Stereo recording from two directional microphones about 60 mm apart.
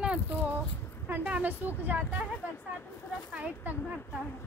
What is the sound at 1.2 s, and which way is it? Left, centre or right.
Speech, right.